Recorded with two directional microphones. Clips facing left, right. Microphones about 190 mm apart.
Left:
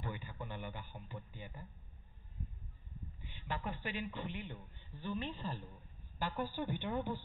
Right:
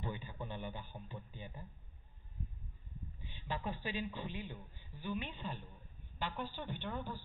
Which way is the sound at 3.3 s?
20° right (ahead or behind).